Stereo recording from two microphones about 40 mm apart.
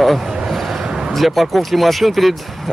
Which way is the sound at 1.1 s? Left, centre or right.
Centre.